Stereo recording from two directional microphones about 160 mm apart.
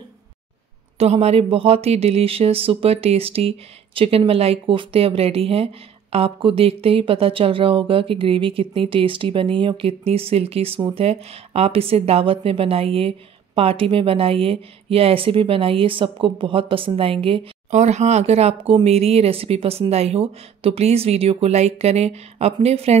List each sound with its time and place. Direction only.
0.9 s a woman's voice: 40° right (ahead or behind)